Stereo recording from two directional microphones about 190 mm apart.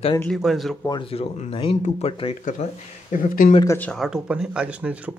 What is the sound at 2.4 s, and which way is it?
Speech, 40° left (ahead or behind).